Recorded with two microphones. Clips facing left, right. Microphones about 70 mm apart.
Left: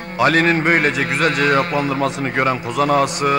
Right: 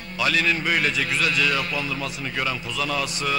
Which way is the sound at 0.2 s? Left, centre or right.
Left.